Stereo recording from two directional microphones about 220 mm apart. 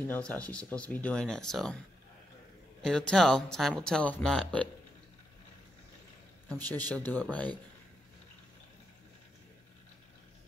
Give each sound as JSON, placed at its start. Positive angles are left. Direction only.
{"t": 0.1, "sound": "speech", "side_deg": 5}
{"t": 2.8, "sound": "speech", "side_deg": 5}
{"t": 6.5, "sound": "speech", "side_deg": 5}